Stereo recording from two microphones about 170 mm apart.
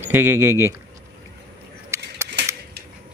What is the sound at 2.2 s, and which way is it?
Cap gun, 80° right.